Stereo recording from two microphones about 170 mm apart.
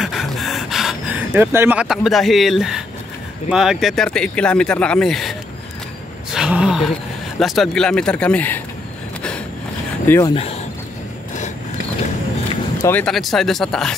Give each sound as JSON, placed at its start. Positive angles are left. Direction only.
{"t": 0.0, "sound": "gasp", "side_deg": 0}
{"t": 3.4, "sound": "speech", "side_deg": -5}
{"t": 6.3, "sound": "speech", "side_deg": -5}
{"t": 10.0, "sound": "speech", "side_deg": 15}
{"t": 10.3, "sound": "speech", "side_deg": 35}
{"t": 12.8, "sound": "speech", "side_deg": 10}